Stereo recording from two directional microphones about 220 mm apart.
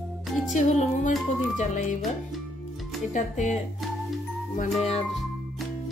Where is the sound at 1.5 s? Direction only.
35° left (ahead or behind).